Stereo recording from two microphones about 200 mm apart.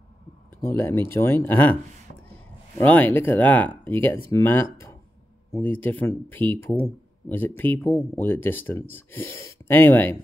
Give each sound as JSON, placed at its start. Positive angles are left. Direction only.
{"t": 0.6, "sound": "speech", "side_deg": 10}
{"t": 2.8, "sound": "speech", "side_deg": 10}